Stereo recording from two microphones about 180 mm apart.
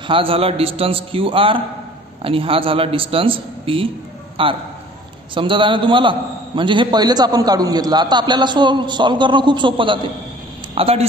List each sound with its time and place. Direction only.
0.0 s a man's voice: 30° right (ahead or behind)